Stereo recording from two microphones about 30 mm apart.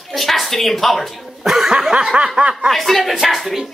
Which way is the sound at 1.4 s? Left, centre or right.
Centre.